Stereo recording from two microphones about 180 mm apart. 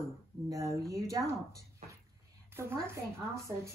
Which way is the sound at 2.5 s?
15° right (ahead or behind).